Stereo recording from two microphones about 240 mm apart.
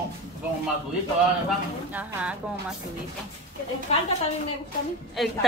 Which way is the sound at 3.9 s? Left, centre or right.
Left.